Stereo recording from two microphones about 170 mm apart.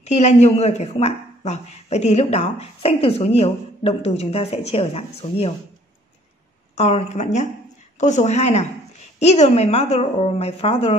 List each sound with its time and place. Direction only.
0.0 s speech: 40° left (ahead or behind)
6.7 s speech: 40° left (ahead or behind)